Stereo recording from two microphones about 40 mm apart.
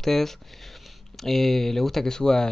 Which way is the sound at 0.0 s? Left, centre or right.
Centre.